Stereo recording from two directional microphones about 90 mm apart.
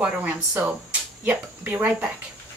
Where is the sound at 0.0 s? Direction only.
15° right (ahead or behind).